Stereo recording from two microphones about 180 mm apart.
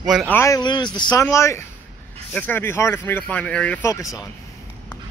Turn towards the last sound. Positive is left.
turn(degrees=15)  # may be behind; listen again after turning